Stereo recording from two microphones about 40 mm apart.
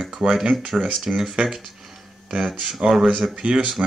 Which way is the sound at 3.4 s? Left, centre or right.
Right.